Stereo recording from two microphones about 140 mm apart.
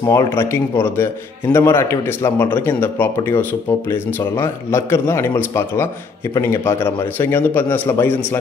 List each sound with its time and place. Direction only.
0.0 s speech: 30° left (ahead or behind)
0.4 s a man's voice: 15° left (ahead or behind)